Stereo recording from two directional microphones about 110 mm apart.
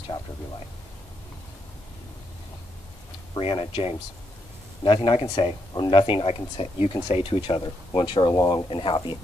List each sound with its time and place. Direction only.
3.3 s speech: 50° left (ahead or behind)
8.6 s speech: 55° left (ahead or behind)